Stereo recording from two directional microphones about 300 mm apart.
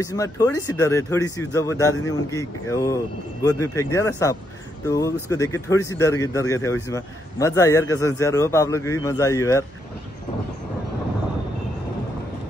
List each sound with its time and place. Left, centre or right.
0.0 s speech: centre